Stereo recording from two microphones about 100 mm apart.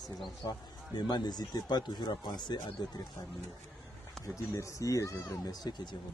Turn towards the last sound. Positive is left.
turn(degrees=45)  # may be behind; listen again after turning